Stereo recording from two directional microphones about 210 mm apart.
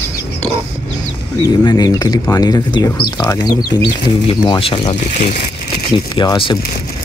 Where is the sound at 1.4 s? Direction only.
20° left (ahead or behind).